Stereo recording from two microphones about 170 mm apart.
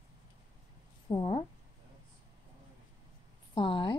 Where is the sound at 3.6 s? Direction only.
30° left (ahead or behind).